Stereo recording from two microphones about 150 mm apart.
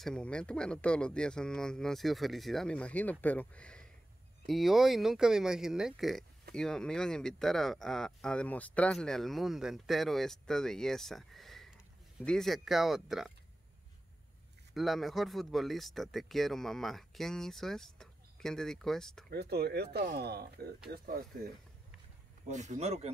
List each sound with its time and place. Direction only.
0.0 s speech: 5° left (ahead or behind)
14.7 s speech: centre (ahead or behind)
19.3 s speech: 90° right
22.5 s speech: 50° right (ahead or behind)